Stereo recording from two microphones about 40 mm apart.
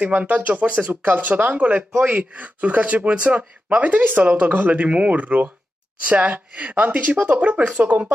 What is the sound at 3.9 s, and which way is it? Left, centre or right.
A woman's voice, right.